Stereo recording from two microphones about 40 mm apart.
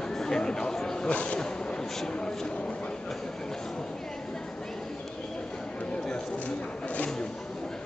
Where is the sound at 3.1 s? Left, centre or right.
Centre.